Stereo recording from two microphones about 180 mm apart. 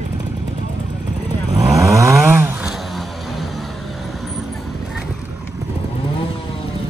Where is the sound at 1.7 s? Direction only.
15° right (ahead or behind).